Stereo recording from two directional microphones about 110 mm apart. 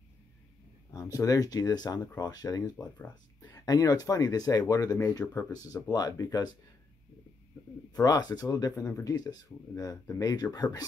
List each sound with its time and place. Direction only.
0.9 s speech: 30° left (ahead or behind)
7.9 s speech: 35° left (ahead or behind)